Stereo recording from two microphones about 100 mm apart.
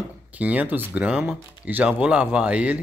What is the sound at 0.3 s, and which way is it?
Speech, 15° right (ahead or behind).